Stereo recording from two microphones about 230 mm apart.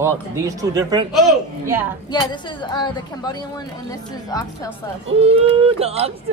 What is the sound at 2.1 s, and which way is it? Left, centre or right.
A woman's voice, centre.